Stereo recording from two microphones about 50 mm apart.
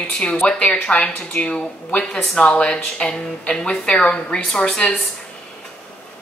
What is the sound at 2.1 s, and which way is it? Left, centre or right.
A woman's voice, centre.